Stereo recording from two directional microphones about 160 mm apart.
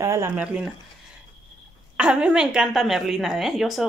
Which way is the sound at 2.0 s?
5° right (ahead or behind).